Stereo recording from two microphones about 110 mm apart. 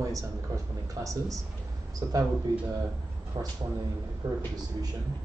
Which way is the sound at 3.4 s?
40° right (ahead or behind).